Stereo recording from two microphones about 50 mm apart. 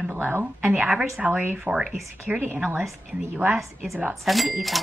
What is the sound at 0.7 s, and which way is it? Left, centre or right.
Speech, right.